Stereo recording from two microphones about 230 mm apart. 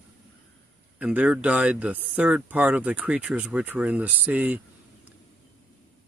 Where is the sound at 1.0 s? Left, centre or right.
Centre.